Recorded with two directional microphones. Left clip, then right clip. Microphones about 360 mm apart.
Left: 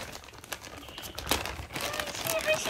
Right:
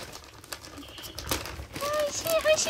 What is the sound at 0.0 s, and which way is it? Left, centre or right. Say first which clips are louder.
Typewriter: left 1 dB; left.